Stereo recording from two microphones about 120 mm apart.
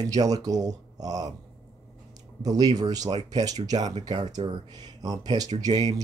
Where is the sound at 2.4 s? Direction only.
30° right (ahead or behind).